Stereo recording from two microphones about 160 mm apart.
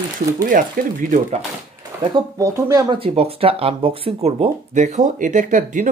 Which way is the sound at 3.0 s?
35° right (ahead or behind).